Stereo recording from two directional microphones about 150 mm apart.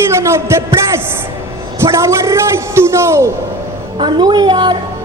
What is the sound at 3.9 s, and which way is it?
Speech, 30° right (ahead or behind).